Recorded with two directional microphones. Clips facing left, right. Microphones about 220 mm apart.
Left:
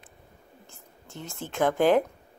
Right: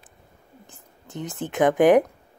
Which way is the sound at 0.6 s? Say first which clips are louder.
Right 2 dB; 20° right (ahead or behind).